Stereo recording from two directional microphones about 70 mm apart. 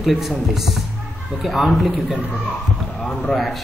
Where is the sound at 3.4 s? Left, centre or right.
Centre.